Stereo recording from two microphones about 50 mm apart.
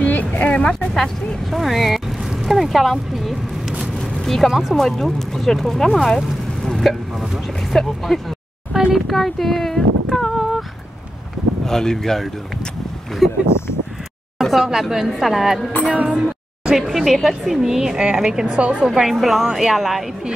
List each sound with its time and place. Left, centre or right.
0.0 s a sound: left
0.7 s speech: centre
4.0 s a sound: centre
4.7 s speech: centre
8.9 s a sound: centre
11.6 s speech: centre
13.2 s speech: centre
14.4 s speech: centre
15.8 s a woman's voice: right
16.1 s speech: centre
18.4 s a woman's voice: right
18.9 s speech: centre